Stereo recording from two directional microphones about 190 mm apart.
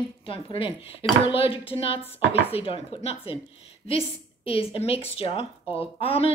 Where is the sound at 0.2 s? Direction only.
30° left (ahead or behind).